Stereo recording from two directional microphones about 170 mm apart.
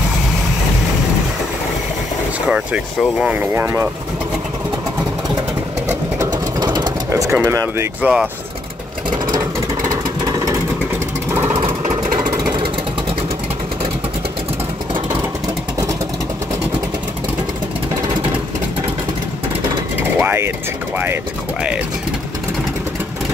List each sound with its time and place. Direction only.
2.4 s speech: 5° right (ahead or behind)
6.3 s vehicle: 25° right (ahead or behind); by 8.3 s 5° right (ahead or behind)
9.1 s vehicle: 25° right (ahead or behind)
12.1 s a sound: 25° right (ahead or behind)
20.0 s a sound: 15° right (ahead or behind)
21.0 s vehicle: 10° right (ahead or behind)